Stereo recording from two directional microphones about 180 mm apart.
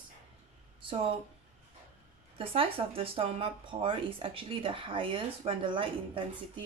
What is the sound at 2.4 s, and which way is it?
Speech, 30° right (ahead or behind).